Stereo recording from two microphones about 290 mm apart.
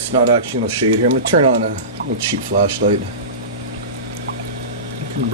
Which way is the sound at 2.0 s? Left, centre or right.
Right.